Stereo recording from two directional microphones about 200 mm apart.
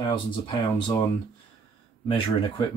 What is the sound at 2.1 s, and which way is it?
Speech, 25° left (ahead or behind).